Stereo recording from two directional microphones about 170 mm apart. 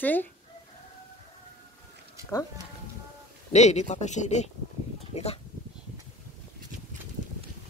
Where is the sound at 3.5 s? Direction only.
40° left (ahead or behind).